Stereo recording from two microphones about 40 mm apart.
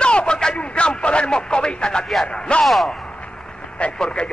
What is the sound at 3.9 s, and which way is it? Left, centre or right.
Speech, left.